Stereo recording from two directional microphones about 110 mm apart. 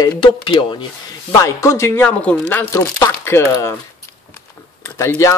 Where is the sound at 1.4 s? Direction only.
25° left (ahead or behind).